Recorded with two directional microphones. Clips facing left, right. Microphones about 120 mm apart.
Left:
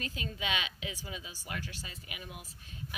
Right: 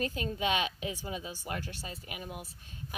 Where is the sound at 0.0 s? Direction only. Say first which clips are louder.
Right 7 dB; 45° right (ahead or behind).